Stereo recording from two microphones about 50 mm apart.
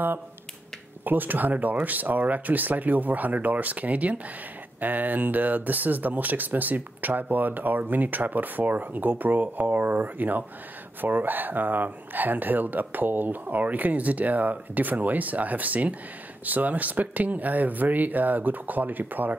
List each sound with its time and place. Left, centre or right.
1.0 s speech: right